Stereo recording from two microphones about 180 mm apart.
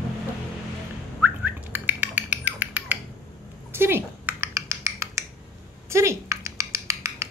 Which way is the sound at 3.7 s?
10° right (ahead or behind).